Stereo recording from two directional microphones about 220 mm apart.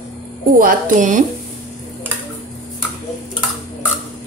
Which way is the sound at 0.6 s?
35° right (ahead or behind).